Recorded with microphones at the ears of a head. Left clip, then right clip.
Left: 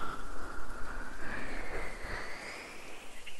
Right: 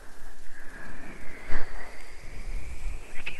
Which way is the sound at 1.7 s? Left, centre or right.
Left.